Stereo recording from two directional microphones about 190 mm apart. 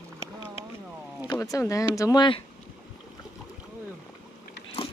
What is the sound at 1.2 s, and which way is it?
Speech, 15° left (ahead or behind).